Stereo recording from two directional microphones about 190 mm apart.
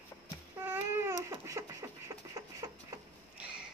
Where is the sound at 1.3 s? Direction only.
15° right (ahead or behind).